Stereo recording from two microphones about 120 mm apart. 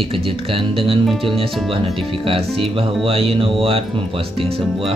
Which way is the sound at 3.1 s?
50° right (ahead or behind).